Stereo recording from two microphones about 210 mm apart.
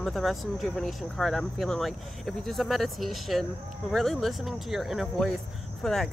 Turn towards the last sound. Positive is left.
turn(degrees=0)  # may be behind; listen again after turning